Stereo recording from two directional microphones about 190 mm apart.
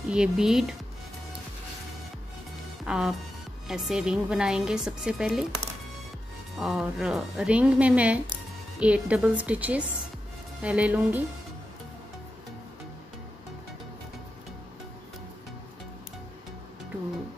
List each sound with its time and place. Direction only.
0.1 s a woman's voice: 5° right (ahead or behind)
2.8 s a woman's voice: centre (ahead or behind)
6.5 s a woman's voice: centre (ahead or behind)